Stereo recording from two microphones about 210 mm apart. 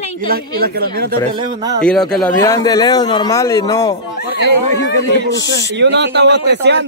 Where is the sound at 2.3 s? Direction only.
15° left (ahead or behind).